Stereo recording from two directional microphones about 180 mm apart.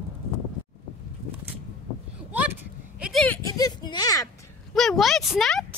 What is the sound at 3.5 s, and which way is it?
Speech, 20° left (ahead or behind).